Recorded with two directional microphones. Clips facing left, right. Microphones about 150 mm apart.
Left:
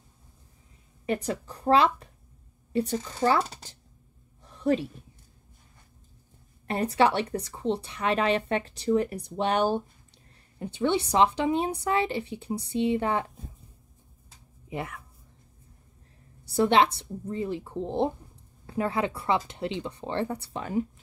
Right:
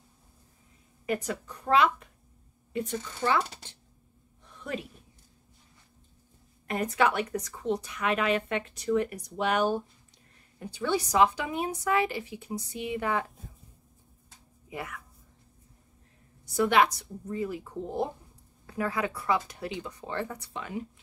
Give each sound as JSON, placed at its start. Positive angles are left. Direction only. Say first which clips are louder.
{"t": 1.0, "sound": "a woman's voice", "louder": "left 2 dB", "side_deg": 30}
{"t": 4.5, "sound": "a sound", "louder": "left 11 dB", "side_deg": 35}
{"t": 6.7, "sound": "a woman's voice", "louder": "left 3 dB", "side_deg": 30}
{"t": 14.7, "sound": "speech", "louder": "left 4 dB", "side_deg": 30}
{"t": 16.4, "sound": "a woman's voice", "louder": "left 2 dB", "side_deg": 30}